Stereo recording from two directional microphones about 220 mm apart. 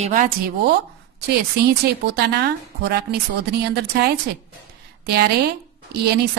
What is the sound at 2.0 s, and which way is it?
A woman's voice, 50° right (ahead or behind).